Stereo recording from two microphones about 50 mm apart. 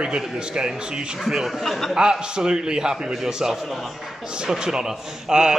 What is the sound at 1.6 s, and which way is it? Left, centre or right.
Speech, centre.